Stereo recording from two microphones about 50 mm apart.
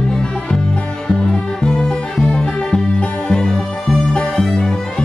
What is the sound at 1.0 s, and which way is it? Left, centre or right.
Music, centre.